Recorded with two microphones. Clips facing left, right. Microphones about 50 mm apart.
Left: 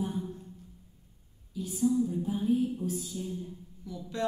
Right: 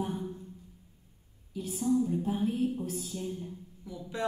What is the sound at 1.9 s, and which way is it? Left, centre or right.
Speech, right.